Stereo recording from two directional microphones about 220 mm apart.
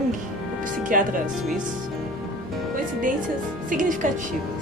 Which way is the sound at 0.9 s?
40° right (ahead or behind).